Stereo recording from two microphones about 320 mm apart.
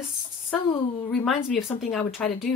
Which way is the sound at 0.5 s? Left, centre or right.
Centre.